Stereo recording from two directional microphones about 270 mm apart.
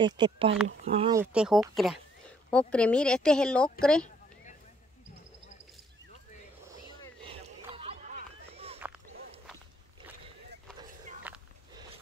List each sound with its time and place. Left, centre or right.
0.0 s speech: centre
1.1 s speech: centre
7.7 s a sound: right